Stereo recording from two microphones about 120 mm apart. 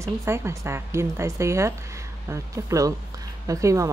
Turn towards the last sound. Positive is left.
turn(degrees=-25)  # may be behind; listen again after turning